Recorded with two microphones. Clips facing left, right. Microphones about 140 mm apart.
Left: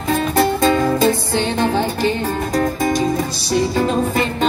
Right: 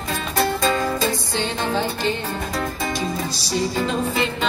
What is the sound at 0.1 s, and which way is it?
Music, 50° left (ahead or behind).